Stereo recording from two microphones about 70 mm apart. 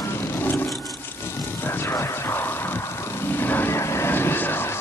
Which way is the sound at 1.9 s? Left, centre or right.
Left.